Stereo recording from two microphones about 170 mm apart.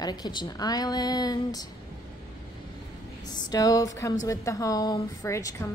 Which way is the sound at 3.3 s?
25° left (ahead or behind).